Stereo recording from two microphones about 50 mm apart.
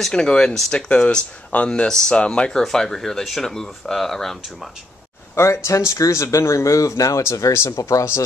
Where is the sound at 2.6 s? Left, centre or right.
Centre.